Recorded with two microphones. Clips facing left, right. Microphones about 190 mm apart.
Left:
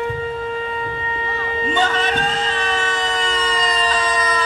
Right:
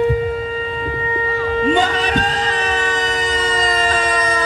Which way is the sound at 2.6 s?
20° right (ahead or behind).